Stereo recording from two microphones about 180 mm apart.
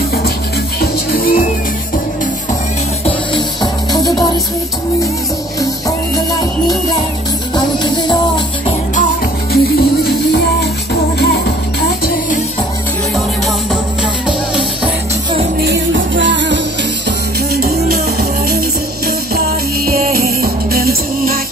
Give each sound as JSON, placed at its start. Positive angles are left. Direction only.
{"t": 0.7, "sound": "music", "side_deg": 55}
{"t": 3.3, "sound": "music", "side_deg": 20}
{"t": 7.5, "sound": "music", "side_deg": 25}
{"t": 9.5, "sound": "music", "side_deg": 60}
{"t": 15.6, "sound": "music", "side_deg": -80}
{"t": 17.6, "sound": "music", "side_deg": -55}
{"t": 19.3, "sound": "music", "side_deg": -55}